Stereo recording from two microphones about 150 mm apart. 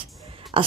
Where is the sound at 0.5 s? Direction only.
35° right (ahead or behind).